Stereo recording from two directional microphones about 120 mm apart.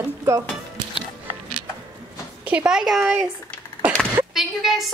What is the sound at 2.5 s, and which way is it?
Speech, 10° right (ahead or behind).